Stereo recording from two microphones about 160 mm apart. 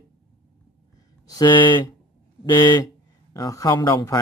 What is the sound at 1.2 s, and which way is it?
Speech, 25° left (ahead or behind).